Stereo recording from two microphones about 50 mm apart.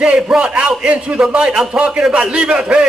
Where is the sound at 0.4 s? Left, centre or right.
Right.